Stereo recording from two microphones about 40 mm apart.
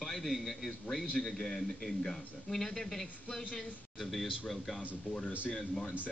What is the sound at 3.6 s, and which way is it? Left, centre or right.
Speech, centre.